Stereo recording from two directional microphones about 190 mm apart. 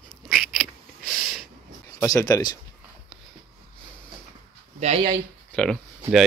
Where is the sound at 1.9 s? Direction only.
15° left (ahead or behind).